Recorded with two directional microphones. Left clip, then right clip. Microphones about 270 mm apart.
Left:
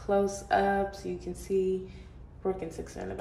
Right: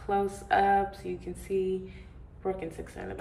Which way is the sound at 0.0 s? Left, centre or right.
Centre.